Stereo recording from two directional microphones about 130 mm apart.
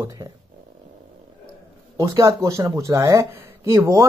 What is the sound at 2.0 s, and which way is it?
Speech, 25° right (ahead or behind).